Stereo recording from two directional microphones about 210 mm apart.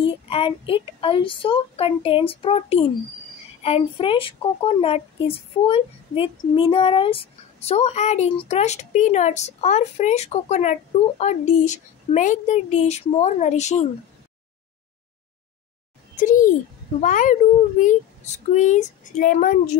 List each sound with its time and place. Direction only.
0.0 s speech: 25° left (ahead or behind)
16.2 s speech: 40° left (ahead or behind)